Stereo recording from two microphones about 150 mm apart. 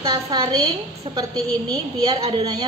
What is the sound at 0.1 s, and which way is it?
Speech, 30° right (ahead or behind).